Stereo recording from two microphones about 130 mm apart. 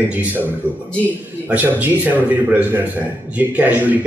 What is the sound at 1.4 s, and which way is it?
A man's voice, 10° right (ahead or behind).